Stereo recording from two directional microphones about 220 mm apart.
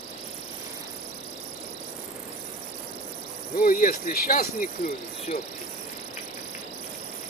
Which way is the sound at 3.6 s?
40° left (ahead or behind).